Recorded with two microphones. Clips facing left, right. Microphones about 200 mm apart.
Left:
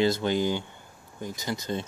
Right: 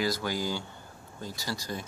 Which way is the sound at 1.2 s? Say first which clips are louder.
Left 4 dB; 20° left (ahead or behind).